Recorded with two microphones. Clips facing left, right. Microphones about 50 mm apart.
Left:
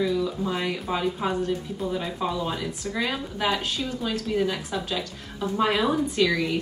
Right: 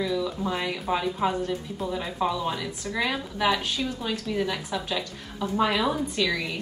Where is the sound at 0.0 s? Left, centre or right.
Centre.